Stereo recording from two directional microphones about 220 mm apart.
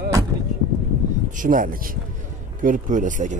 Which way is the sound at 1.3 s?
40° right (ahead or behind).